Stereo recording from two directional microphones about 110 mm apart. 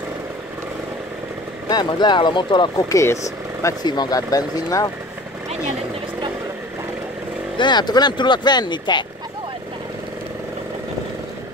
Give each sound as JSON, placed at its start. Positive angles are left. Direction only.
{"t": 1.7, "sound": "speech", "side_deg": 40}
{"t": 2.9, "sound": "speech", "side_deg": 25}
{"t": 3.6, "sound": "speech", "side_deg": 40}
{"t": 7.5, "sound": "speech", "side_deg": 45}